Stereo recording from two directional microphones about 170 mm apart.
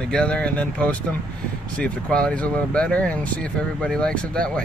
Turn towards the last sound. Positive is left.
turn(degrees=5)  # may be behind; listen again after turning